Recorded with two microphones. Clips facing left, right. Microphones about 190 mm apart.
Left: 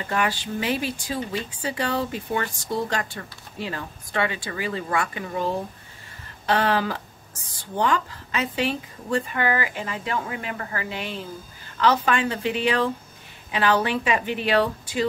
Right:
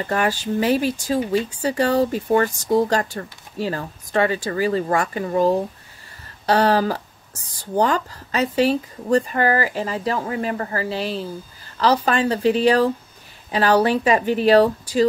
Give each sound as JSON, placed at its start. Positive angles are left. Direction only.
{"t": 0.1, "sound": "speech", "side_deg": -40}